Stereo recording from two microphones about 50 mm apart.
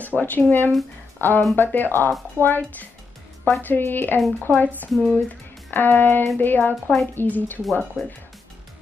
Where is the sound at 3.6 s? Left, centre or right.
Left.